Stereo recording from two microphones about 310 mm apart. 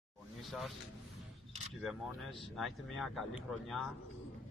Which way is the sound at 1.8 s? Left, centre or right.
Centre.